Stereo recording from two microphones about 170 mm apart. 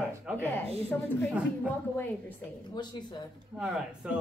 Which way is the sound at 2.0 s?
10° left (ahead or behind).